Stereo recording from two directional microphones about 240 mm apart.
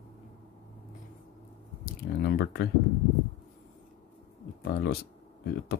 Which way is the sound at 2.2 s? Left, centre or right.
Left.